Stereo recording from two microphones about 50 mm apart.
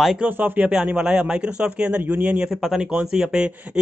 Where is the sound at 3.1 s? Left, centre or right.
Centre.